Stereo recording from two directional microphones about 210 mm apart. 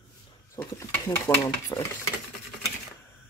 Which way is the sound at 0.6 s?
15° left (ahead or behind).